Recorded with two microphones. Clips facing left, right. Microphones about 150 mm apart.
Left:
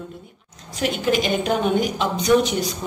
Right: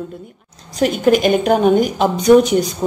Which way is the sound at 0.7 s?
45° right (ahead or behind).